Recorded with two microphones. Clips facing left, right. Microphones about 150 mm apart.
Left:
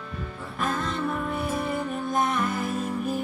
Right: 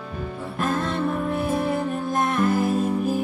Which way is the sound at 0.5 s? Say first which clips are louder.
Right 4 dB; centre (ahead or behind).